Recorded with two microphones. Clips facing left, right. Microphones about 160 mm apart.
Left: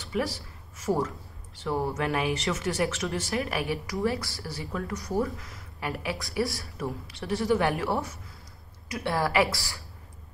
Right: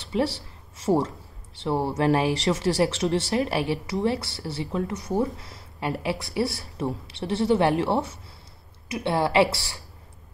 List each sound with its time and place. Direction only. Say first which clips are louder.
0.0 s speech: right 4 dB; 30° right (ahead or behind)